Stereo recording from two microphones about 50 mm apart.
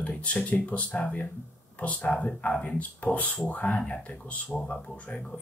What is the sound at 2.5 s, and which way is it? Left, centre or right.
Speech, centre.